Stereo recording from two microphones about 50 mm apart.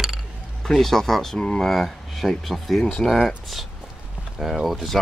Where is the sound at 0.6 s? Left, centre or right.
Centre.